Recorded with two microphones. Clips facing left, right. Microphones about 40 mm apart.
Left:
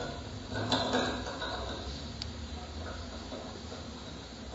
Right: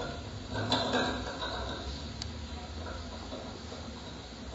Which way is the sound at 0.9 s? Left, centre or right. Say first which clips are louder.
Even; right.